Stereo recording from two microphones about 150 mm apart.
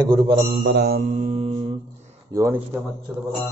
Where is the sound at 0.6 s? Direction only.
90° right.